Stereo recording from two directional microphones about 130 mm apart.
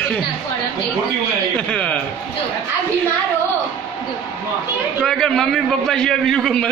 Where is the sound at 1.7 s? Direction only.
5° left (ahead or behind).